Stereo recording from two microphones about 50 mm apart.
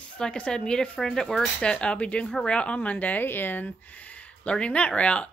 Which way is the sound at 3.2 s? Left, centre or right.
Left.